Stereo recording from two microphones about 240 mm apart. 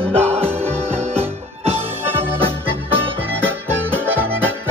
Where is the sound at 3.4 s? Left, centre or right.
Centre.